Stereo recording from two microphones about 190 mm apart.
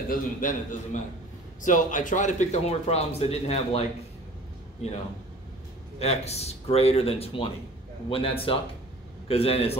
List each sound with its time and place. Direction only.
0.1 s a man's voice: 45° left (ahead or behind)
5.9 s a man's voice: 35° left (ahead or behind)